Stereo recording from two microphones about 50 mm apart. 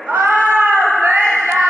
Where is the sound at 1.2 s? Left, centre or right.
Centre.